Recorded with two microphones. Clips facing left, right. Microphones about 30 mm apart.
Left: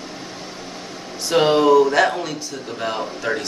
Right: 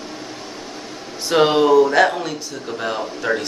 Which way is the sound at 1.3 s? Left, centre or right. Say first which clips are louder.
Even; centre.